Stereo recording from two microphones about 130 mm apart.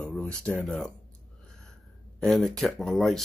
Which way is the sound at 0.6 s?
5° left (ahead or behind).